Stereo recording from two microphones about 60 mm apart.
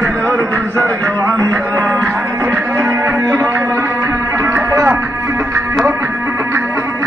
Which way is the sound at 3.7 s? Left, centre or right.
Right.